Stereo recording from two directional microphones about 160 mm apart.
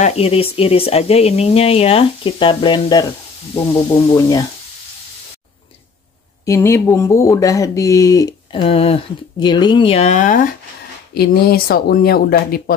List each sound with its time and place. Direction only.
0.0 s speech: 40° left (ahead or behind)
4.1 s speech: 20° left (ahead or behind)
6.4 s speech: 20° left (ahead or behind); by 10.4 s 50° left (ahead or behind)
11.1 s speech: 75° left (ahead or behind)